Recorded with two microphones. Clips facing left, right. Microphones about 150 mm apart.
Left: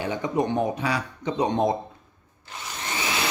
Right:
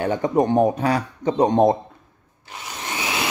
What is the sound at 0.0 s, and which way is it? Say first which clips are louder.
Speech: right 6 dB; 50° right (ahead or behind).